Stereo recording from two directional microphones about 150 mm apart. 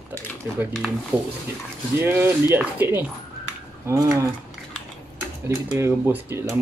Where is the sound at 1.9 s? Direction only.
15° right (ahead or behind).